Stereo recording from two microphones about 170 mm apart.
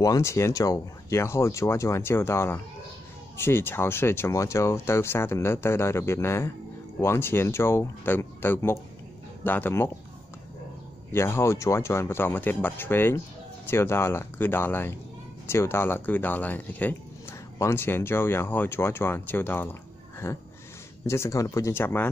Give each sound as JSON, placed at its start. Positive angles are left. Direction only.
{"t": 0.0, "sound": "speech", "side_deg": 20}
{"t": 11.1, "sound": "speech", "side_deg": 15}